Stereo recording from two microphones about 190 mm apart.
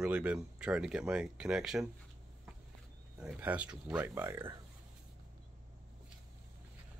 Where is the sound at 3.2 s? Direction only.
5° right (ahead or behind).